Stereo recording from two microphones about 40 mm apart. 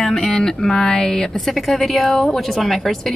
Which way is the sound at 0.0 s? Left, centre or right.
Centre.